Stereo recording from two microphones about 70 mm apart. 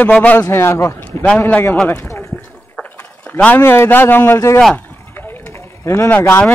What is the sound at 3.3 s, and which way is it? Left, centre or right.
Speech, left.